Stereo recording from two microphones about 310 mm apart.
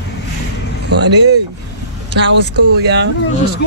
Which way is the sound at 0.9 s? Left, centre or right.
Right.